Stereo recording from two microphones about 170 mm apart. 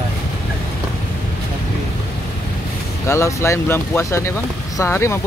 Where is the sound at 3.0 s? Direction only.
15° left (ahead or behind).